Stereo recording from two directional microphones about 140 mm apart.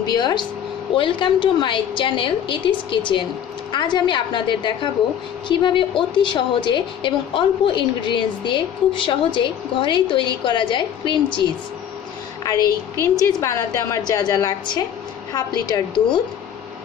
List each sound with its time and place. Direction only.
0.1 s a woman's voice: 30° left (ahead or behind)
12.4 s a woman's voice: 25° left (ahead or behind)